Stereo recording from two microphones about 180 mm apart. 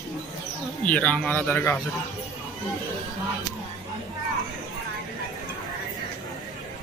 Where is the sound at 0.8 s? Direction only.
10° left (ahead or behind).